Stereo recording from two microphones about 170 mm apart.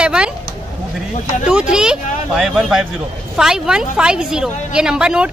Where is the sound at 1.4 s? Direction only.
5° right (ahead or behind).